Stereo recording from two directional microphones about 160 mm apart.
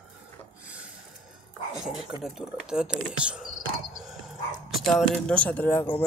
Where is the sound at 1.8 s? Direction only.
5° right (ahead or behind); by 6.0 s 15° left (ahead or behind).